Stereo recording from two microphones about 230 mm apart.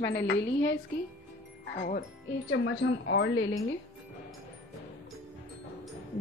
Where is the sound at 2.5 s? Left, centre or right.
Left.